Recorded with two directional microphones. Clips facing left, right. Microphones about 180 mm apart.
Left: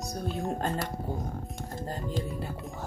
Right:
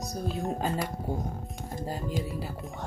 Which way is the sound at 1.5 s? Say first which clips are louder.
Right 3 dB; 10° right (ahead or behind).